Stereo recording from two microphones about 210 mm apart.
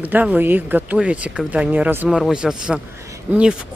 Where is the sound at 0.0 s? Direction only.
5° right (ahead or behind).